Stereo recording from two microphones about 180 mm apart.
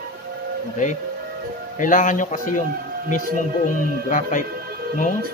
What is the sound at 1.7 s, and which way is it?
Speech, 45° left (ahead or behind).